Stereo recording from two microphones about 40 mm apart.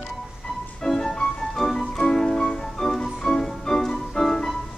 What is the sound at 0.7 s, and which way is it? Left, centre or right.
Music, centre.